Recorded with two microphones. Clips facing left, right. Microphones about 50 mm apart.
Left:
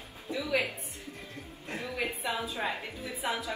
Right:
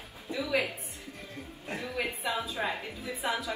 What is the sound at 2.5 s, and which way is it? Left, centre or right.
Speech, right.